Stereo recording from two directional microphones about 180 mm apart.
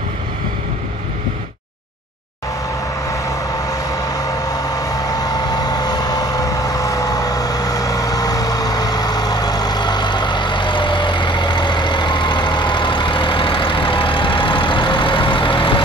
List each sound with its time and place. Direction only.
3.1 s vehicle: 20° left (ahead or behind)